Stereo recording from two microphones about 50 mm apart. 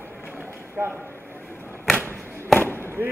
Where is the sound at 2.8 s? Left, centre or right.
Right.